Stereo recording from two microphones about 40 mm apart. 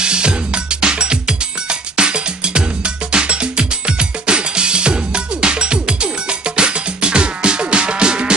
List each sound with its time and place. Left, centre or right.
0.0 s music: right